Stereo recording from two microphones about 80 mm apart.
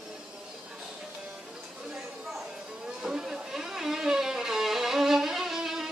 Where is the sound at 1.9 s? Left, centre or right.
Centre.